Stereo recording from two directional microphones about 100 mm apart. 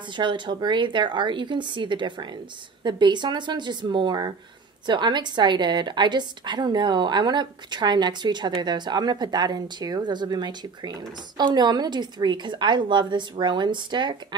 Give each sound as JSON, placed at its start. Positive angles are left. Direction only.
{"t": 0.1, "sound": "a woman's voice", "side_deg": -50}